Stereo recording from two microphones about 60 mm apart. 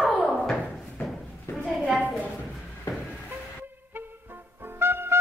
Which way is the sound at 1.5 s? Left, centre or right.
Left.